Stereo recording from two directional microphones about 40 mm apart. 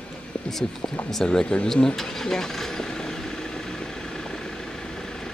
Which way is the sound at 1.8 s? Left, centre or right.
Centre.